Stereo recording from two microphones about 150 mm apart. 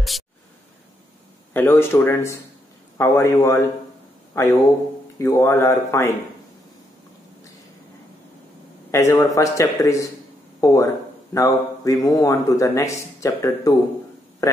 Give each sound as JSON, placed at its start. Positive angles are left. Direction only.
{"t": 1.5, "sound": "a man's voice", "side_deg": 15}
{"t": 8.9, "sound": "a man's voice", "side_deg": 20}